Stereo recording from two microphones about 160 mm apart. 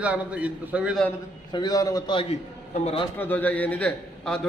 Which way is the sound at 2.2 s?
40° left (ahead or behind).